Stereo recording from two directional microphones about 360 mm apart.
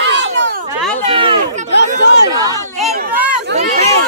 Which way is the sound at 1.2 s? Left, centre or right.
Centre.